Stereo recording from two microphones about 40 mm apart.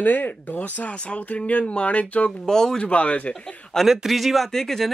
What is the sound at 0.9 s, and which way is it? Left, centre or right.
Speech, left.